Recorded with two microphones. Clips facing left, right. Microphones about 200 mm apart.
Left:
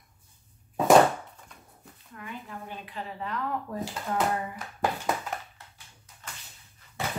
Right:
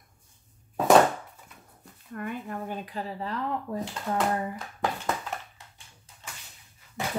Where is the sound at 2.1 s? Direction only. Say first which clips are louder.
Right 7 dB; 50° right (ahead or behind); by 4.2 s 25° right (ahead or behind).